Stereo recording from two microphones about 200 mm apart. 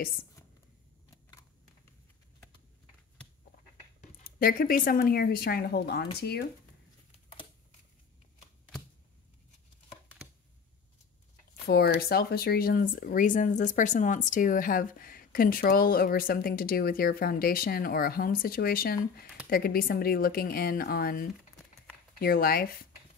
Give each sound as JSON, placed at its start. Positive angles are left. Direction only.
{"t": 4.2, "sound": "speech", "side_deg": 45}
{"t": 11.6, "sound": "speech", "side_deg": 50}